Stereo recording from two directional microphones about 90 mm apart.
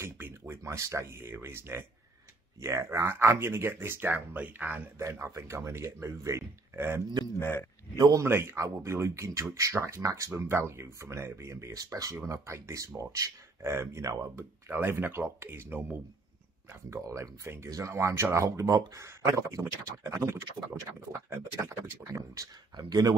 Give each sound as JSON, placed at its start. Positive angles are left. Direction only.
{"t": 0.0, "sound": "speech", "side_deg": -30}
{"t": 4.9, "sound": "speech", "side_deg": -30}
{"t": 7.3, "sound": "speech", "side_deg": 25}
{"t": 8.2, "sound": "speech", "side_deg": -25}
{"t": 12.2, "sound": "speech", "side_deg": -30}
{"t": 14.7, "sound": "speech", "side_deg": -25}
{"t": 22.8, "sound": "speech", "side_deg": -50}